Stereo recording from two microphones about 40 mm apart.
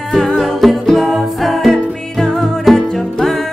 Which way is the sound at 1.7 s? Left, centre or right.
Centre.